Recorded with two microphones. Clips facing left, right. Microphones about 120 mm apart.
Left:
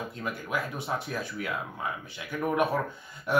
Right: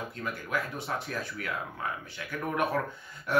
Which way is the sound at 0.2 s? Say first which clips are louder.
Left 1 dB; 15° left (ahead or behind).